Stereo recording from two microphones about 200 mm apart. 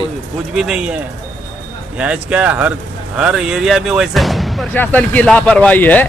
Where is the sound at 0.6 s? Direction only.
5° right (ahead or behind).